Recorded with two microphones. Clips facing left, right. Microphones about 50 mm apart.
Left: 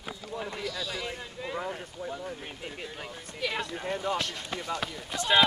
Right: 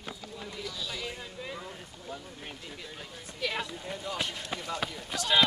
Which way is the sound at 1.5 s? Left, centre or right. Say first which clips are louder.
Left 8 dB; left.